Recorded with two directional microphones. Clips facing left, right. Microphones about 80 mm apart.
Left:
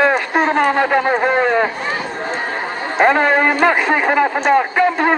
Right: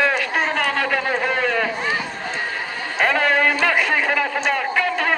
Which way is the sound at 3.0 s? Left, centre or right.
Left.